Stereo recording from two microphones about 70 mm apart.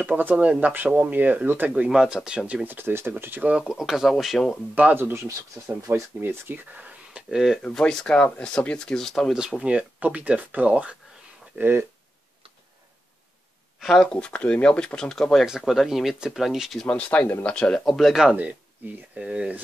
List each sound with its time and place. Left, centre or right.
0.0 s speech: right
1.9 s speech: centre; by 3.4 s right
3.5 s speech: centre
4.7 s speech: right
5.9 s speech: right
6.2 s speech: right
7.2 s speech: centre
7.6 s speech: centre
9.3 s speech: centre
13.9 s speech: centre
15.4 s speech: centre
16.8 s speech: centre
17.8 s speech: centre
19.1 s speech: centre